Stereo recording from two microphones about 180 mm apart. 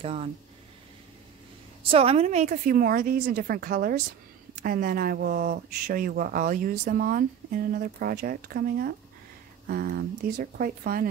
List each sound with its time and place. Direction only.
0.0 s speech: 30° right (ahead or behind)
1.9 s speech: 30° right (ahead or behind); by 11.1 s 55° right (ahead or behind)